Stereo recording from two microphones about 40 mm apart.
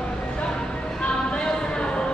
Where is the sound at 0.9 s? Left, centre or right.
Left.